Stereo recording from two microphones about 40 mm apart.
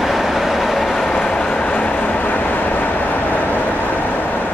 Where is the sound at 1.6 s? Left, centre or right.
Left.